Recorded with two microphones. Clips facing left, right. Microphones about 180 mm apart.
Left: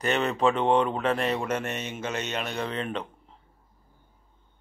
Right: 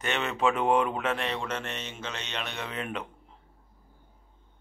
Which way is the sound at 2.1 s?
45° left (ahead or behind).